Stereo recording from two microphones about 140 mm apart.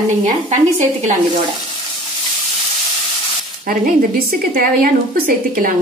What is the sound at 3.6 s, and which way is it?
A woman's voice, 90° right.